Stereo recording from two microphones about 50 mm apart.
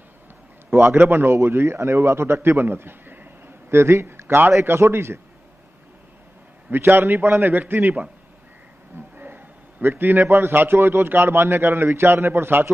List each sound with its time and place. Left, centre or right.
0.8 s a man's voice: right
3.7 s a man's voice: right
6.7 s a man's voice: right
9.1 s a sound: right
10.5 s a man's voice: right